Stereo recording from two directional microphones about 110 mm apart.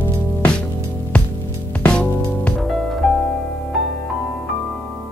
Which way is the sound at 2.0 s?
15° left (ahead or behind).